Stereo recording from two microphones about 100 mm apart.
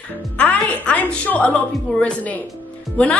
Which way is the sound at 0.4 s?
15° left (ahead or behind).